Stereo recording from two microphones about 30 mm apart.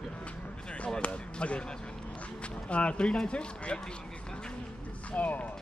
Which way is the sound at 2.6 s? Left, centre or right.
Left.